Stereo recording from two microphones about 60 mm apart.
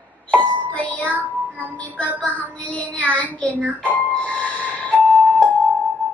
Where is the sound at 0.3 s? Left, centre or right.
Left.